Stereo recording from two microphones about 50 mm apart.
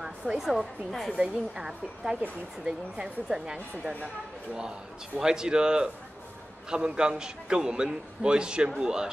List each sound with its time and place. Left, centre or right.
0.0 s a woman's voice: centre
5.2 s a man's voice: centre